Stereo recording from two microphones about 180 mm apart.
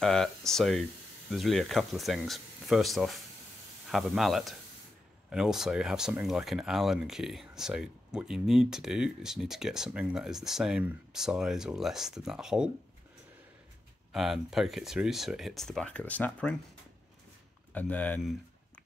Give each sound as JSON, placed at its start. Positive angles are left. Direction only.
{"t": 0.0, "sound": "a sound", "side_deg": 5}
{"t": 1.3, "sound": "speech", "side_deg": 0}
{"t": 14.1, "sound": "speech", "side_deg": 0}
{"t": 17.7, "sound": "speech", "side_deg": 10}